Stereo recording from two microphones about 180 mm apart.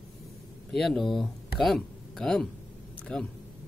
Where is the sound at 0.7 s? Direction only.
Centre (ahead or behind).